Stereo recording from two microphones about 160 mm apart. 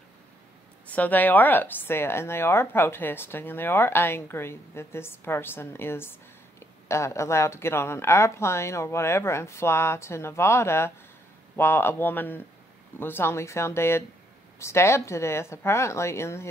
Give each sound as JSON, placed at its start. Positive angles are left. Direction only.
{"t": 0.9, "sound": "a woman's voice", "side_deg": 10}